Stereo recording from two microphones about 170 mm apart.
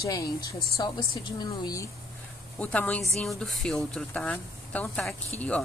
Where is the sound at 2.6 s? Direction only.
10° left (ahead or behind).